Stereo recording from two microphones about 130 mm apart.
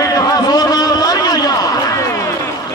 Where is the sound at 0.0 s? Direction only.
30° left (ahead or behind).